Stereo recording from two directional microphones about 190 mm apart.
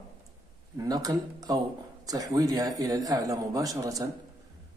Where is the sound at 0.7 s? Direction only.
20° right (ahead or behind).